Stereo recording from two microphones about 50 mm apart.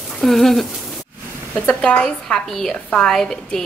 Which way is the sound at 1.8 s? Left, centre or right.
Centre.